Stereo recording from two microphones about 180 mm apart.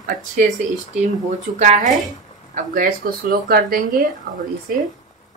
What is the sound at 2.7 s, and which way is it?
Speech, 55° right (ahead or behind).